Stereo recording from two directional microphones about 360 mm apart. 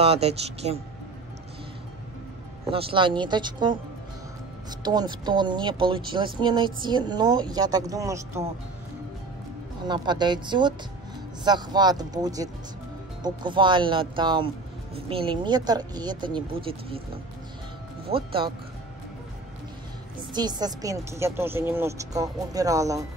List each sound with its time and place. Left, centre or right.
0.0 s speech: centre
2.7 s speech: centre
9.8 s speech: centre
20.3 s speech: centre